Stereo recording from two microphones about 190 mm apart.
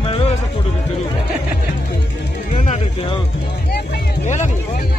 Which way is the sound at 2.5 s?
40° left (ahead or behind).